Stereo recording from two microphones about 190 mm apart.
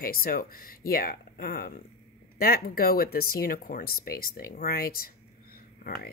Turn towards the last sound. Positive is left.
turn(degrees=50)  # may be behind; listen again after turning